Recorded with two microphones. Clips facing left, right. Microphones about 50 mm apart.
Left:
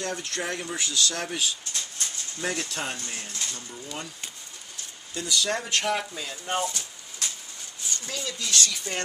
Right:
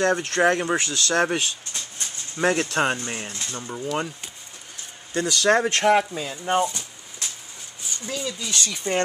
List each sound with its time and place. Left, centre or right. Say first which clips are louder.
0.0 s speech: right 12 dB; right
3.0 s speech: right 4 dB; right
3.6 s speech: right 10 dB; right
5.1 s speech: right 8 dB; right
5.9 s speech: right 9 dB; centre
7.9 s speech: right 4 dB; centre
8.6 s speech: right 7 dB; right